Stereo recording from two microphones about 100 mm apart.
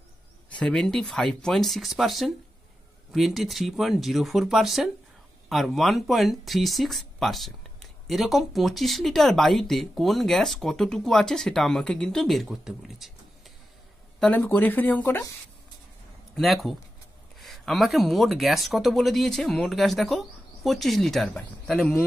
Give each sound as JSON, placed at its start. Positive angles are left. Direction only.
{"t": 0.5, "sound": "speech", "side_deg": 10}
{"t": 14.2, "sound": "speech", "side_deg": 15}
{"t": 15.0, "sound": "speech", "side_deg": 30}
{"t": 16.3, "sound": "speech", "side_deg": 0}